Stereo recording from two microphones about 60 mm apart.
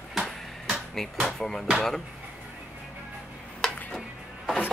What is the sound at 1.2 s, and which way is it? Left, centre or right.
Speech, centre.